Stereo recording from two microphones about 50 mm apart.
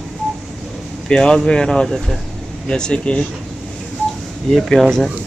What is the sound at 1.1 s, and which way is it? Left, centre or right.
Speech, centre.